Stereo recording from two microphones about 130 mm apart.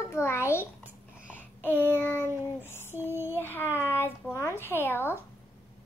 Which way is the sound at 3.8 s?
15° left (ahead or behind).